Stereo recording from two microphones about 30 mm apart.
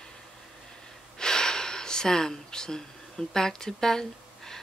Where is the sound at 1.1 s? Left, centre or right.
Left.